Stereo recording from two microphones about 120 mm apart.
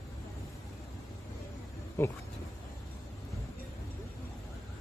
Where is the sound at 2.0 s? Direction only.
20° left (ahead or behind).